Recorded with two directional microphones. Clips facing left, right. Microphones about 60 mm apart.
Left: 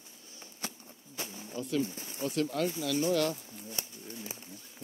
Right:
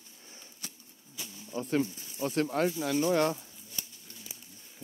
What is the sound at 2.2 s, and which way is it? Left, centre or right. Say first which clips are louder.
Speech: right 2 dB; right.